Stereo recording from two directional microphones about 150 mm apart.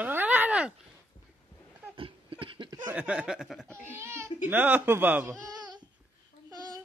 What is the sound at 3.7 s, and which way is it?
A child's voice, 15° right (ahead or behind).